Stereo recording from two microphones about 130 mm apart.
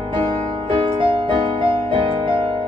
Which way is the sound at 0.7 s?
40° right (ahead or behind).